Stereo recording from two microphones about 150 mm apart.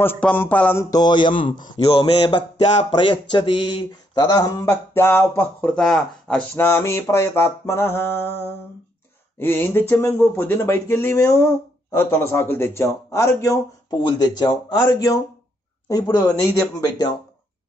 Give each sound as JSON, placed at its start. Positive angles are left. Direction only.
{"t": 0.0, "sound": "speech", "side_deg": 15}
{"t": 0.8, "sound": "speech", "side_deg": 25}
{"t": 1.9, "sound": "mantra", "side_deg": 35}
{"t": 2.9, "sound": "speech", "side_deg": 30}
{"t": 6.5, "sound": "speech", "side_deg": 15}